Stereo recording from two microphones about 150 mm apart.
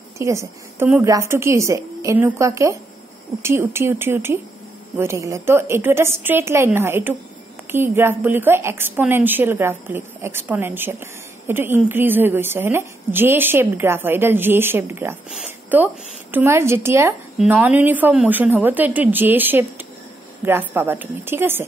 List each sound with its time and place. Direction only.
0.2 s a woman's voice: 20° right (ahead or behind)